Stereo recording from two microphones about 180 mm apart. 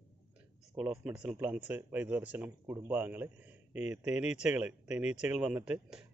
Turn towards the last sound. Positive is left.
turn(degrees=-5)  # may be behind; listen again after turning